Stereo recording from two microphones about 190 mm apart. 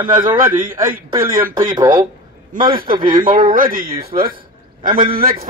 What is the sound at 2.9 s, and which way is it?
Speech, 25° right (ahead or behind).